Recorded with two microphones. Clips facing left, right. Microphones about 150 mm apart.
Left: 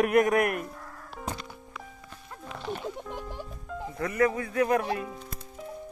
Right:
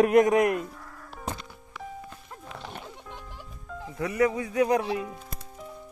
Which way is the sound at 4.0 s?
15° right (ahead or behind).